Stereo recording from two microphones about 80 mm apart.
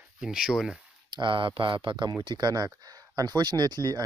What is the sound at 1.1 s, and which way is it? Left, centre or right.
Speech, right.